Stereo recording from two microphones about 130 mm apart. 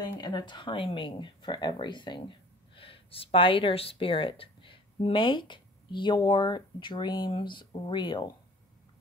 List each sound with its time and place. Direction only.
0.2 s speech: 35° left (ahead or behind)